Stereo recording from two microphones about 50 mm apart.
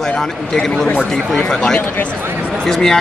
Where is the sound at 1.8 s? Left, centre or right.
Left.